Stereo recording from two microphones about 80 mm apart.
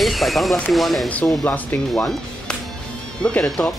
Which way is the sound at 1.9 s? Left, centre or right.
Centre.